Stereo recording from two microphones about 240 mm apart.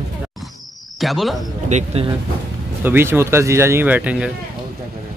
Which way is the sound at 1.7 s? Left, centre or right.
Right.